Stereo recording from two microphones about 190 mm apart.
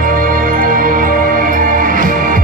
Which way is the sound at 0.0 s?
45° right (ahead or behind).